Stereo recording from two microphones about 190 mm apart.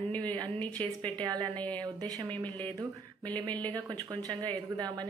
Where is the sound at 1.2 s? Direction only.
20° right (ahead or behind).